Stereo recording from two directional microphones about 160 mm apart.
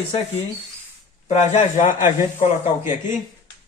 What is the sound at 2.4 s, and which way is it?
Speech, 35° left (ahead or behind).